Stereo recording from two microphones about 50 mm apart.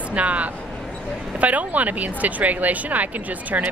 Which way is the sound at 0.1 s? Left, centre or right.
Right.